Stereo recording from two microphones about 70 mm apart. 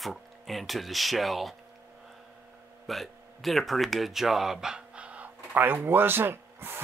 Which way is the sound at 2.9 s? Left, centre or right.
Centre.